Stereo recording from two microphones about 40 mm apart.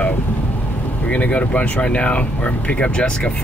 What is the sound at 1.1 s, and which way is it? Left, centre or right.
Speech, left.